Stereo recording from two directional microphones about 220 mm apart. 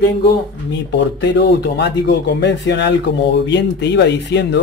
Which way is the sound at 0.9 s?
50° left (ahead or behind).